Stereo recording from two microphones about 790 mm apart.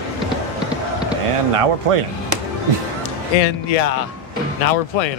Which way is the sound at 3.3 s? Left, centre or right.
Left.